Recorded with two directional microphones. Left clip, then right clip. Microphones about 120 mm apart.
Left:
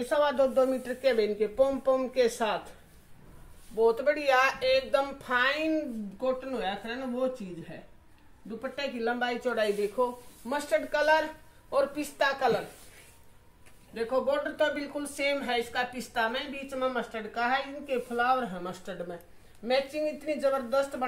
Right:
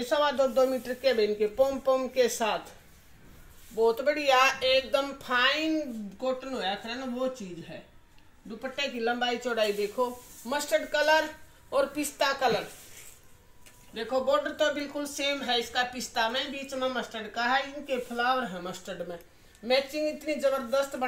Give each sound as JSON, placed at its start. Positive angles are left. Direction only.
{"t": 0.0, "sound": "speech", "side_deg": 15}
{"t": 3.7, "sound": "speech", "side_deg": 15}
{"t": 13.9, "sound": "speech", "side_deg": 35}
{"t": 19.6, "sound": "speech", "side_deg": 0}